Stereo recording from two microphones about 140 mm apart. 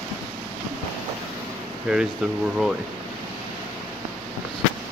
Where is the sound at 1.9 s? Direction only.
5° right (ahead or behind).